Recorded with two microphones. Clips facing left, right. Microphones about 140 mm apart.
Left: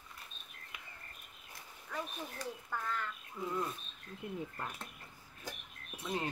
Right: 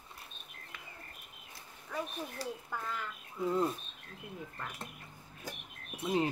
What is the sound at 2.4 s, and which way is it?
Speech, 30° right (ahead or behind).